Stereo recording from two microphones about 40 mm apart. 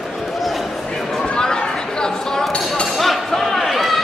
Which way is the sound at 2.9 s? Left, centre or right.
Centre.